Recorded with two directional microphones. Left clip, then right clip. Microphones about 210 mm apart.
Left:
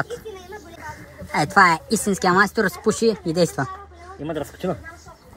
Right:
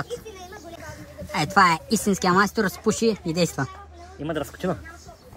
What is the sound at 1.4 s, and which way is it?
Speech, centre (ahead or behind).